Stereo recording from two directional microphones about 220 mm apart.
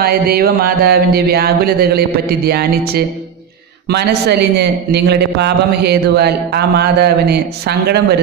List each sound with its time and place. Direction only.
0.0 s a man's voice: 45° right (ahead or behind)